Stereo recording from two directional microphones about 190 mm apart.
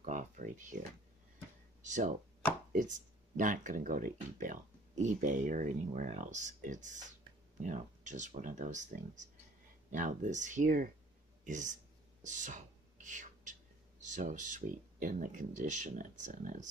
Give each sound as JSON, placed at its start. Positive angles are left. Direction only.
{"t": 0.0, "sound": "speech", "side_deg": -40}
{"t": 12.2, "sound": "whispering", "side_deg": -40}
{"t": 14.0, "sound": "speech", "side_deg": -40}